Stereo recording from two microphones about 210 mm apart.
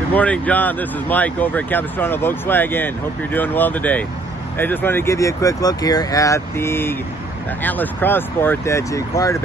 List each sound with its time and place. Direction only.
0.1 s speech: 5° left (ahead or behind)